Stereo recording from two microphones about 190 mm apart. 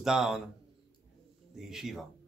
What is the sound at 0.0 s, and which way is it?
Speech, centre (ahead or behind).